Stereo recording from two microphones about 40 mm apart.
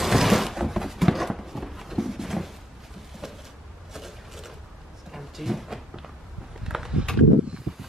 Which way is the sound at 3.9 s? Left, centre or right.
Centre.